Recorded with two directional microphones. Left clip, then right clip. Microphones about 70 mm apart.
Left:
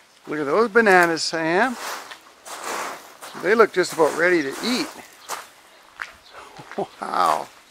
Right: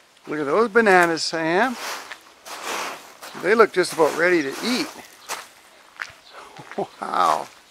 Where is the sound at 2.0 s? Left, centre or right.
Right.